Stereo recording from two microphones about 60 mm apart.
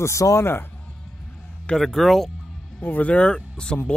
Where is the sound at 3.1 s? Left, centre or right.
Centre.